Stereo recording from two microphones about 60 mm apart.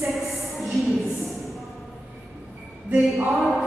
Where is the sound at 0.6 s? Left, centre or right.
Centre.